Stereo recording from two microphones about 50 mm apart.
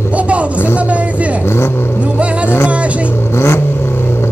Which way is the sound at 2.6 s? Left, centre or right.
Right.